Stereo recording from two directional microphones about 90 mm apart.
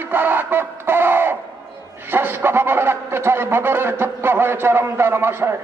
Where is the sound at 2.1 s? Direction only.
25° right (ahead or behind).